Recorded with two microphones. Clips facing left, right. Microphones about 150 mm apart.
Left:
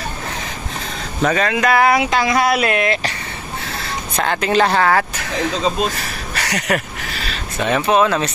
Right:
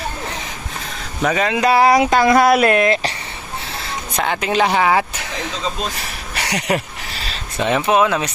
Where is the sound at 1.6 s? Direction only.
30° right (ahead or behind).